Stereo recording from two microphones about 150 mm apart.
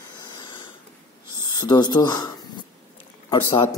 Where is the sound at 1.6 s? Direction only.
30° left (ahead or behind).